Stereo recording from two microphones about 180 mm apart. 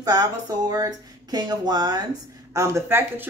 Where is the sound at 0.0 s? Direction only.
20° right (ahead or behind).